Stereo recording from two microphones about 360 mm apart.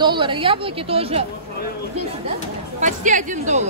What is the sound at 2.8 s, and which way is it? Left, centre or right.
Speech, right.